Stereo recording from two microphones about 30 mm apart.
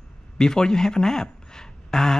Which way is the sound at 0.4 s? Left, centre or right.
Left.